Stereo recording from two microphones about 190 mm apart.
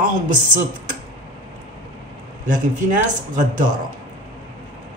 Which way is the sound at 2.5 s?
45° right (ahead or behind).